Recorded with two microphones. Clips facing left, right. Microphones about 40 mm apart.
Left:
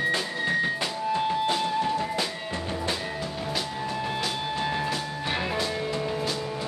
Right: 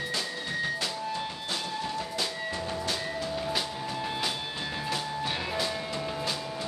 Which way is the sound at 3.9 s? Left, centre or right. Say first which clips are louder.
Left 3 dB; centre.